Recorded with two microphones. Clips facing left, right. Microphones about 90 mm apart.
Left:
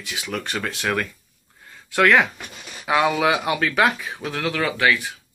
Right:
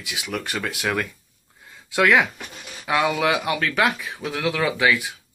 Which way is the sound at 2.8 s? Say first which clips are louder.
Left 2 dB; centre (ahead or behind).